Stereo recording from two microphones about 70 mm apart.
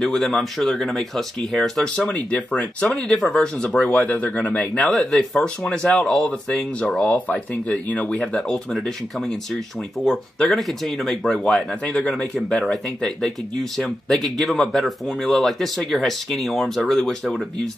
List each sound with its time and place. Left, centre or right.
0.0 s speech: centre
3.1 s speech: centre; by 4.6 s left
4.7 s speech: centre
8.7 s speech: centre
11.8 s speech: centre